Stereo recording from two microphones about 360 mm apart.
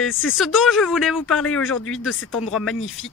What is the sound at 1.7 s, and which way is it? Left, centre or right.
Speech, left.